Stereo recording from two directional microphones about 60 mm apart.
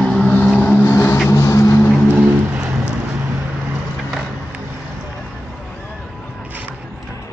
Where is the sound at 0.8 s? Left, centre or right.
Left.